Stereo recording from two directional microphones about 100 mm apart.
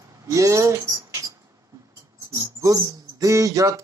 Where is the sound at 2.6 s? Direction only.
35° right (ahead or behind).